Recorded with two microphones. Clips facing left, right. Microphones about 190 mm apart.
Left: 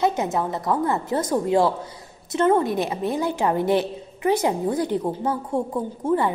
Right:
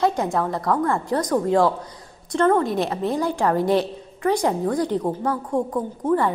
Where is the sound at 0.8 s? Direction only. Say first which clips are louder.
Right 1 dB; 5° left (ahead or behind).